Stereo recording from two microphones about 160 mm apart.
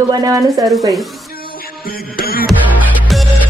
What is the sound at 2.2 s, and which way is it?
Music, 70° left (ahead or behind).